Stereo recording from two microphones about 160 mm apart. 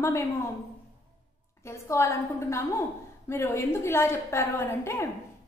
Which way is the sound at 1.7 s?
15° left (ahead or behind).